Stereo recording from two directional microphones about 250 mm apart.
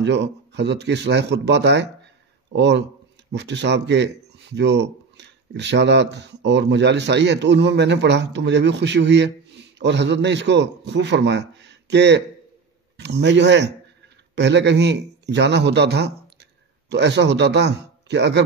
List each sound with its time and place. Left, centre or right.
0.0 s a man's voice: right